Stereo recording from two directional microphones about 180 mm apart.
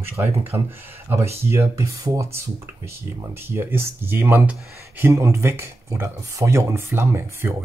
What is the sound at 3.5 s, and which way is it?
Speech, 15° right (ahead or behind).